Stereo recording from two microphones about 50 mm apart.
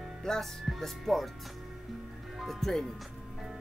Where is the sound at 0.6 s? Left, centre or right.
Centre.